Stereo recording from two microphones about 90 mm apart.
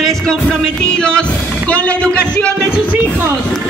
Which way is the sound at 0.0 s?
5° left (ahead or behind).